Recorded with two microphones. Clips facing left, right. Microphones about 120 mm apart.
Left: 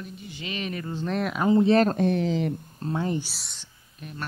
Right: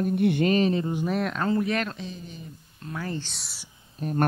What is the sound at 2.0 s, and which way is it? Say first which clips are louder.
Speech: left 15 dB; 70° left (ahead or behind).